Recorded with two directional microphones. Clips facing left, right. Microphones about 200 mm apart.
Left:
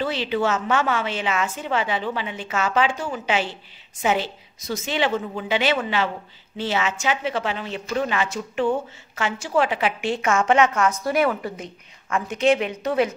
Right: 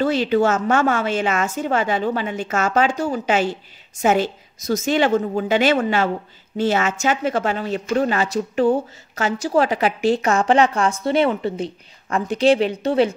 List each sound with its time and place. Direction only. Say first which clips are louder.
0.0 s a woman's voice: right 6 dB; 45° right (ahead or behind); by 13.1 s 30° right (ahead or behind)